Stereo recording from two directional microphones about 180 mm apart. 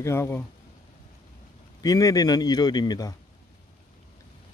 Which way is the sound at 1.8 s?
20° left (ahead or behind).